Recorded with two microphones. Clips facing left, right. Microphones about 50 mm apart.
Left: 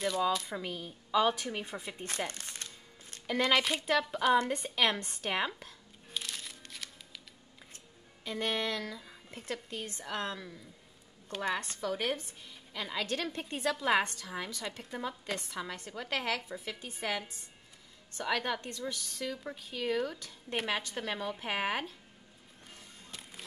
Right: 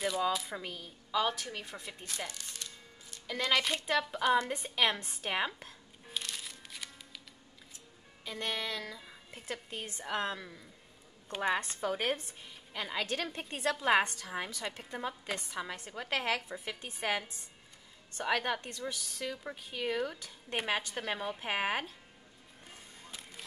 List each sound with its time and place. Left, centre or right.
0.0 s speech: centre
2.2 s music: left
3.3 s speech: centre
3.6 s speech: centre
6.1 s music: centre
8.3 s speech: centre
9.7 s a woman's voice: centre
12.4 s music: right
12.8 s a woman's voice: centre
16.8 s a woman's voice: right
18.1 s a woman's voice: centre